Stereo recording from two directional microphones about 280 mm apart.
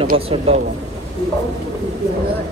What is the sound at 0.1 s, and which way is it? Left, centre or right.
Speech, centre.